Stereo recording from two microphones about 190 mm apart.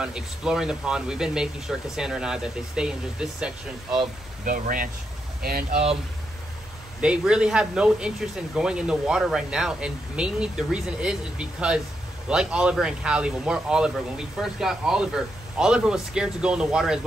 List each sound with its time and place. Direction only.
0.0 s speech: 5° right (ahead or behind)
4.5 s speech: 45° right (ahead or behind)
7.0 s speech: 5° right (ahead or behind)